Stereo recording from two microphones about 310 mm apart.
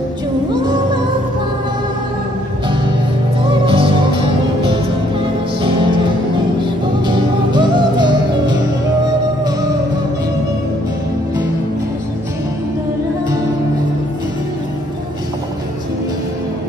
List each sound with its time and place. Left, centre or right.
3.6 s music: centre
6.6 s music: centre